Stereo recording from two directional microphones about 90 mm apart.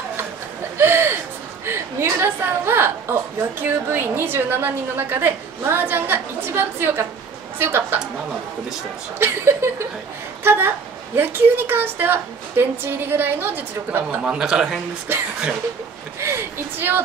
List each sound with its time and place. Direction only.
0.7 s a sound: 25° right (ahead or behind)
3.6 s a woman's voice: 25° right (ahead or behind)
9.2 s a woman's voice: 30° right (ahead or behind)
14.2 s speech: 10° right (ahead or behind)
16.2 s a woman's voice: 30° right (ahead or behind)